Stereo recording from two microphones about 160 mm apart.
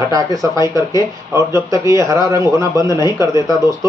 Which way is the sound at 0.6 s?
25° left (ahead or behind).